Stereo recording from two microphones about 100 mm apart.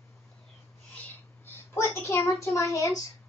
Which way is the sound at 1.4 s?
25° left (ahead or behind).